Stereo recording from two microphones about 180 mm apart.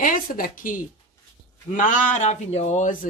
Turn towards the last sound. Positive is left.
turn(degrees=45)  # may be behind; listen again after turning